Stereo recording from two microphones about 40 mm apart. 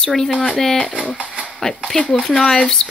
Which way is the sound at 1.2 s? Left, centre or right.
Right.